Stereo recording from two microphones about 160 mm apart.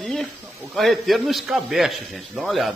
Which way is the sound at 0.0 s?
5° left (ahead or behind).